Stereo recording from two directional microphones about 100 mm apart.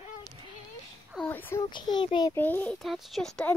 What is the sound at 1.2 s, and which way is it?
Speech, 20° left (ahead or behind).